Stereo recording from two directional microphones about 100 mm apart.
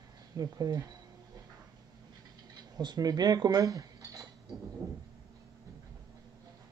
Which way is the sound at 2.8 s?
45° right (ahead or behind).